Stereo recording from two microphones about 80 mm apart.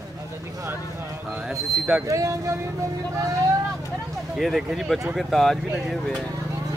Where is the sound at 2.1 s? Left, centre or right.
Right.